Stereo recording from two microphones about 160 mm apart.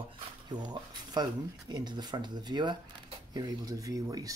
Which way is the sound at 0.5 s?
25° right (ahead or behind).